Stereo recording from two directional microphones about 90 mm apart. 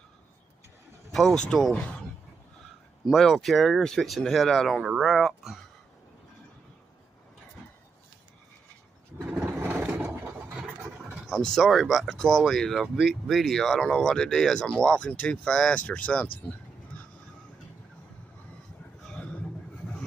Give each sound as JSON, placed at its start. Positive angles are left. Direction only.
{"t": 1.1, "sound": "speech", "side_deg": 5}
{"t": 3.1, "sound": "speech", "side_deg": 0}
{"t": 9.6, "sound": "a sound", "side_deg": -20}
{"t": 10.4, "sound": "vehicle", "side_deg": -15}
{"t": 11.2, "sound": "speech", "side_deg": 5}
{"t": 19.0, "sound": "a sound", "side_deg": 10}